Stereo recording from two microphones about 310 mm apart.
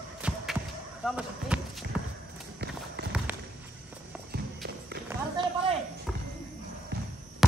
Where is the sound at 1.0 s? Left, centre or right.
Centre.